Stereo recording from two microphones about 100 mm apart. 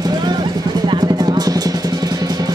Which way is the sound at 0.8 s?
50° right (ahead or behind).